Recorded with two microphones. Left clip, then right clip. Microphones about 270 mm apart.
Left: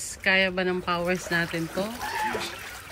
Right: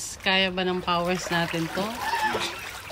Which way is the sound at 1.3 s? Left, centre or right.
Centre.